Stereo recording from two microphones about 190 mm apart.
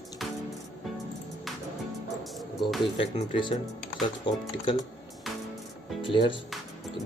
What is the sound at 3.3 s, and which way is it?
Speech, 25° left (ahead or behind).